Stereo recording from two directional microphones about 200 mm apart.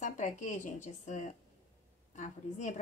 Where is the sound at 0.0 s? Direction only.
40° left (ahead or behind).